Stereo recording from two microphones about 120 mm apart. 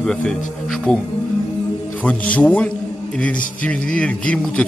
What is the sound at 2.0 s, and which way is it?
A man's voice, 10° left (ahead or behind).